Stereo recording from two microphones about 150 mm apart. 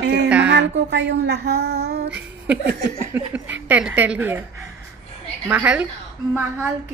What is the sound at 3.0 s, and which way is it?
A woman's voice, 10° right (ahead or behind).